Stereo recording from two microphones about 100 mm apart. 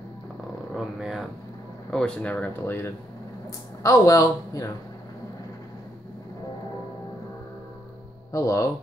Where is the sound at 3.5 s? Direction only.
35° left (ahead or behind).